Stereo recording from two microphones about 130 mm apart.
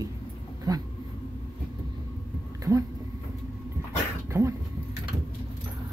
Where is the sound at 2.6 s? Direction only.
25° right (ahead or behind).